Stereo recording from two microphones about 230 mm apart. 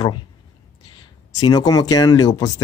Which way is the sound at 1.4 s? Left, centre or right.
Centre.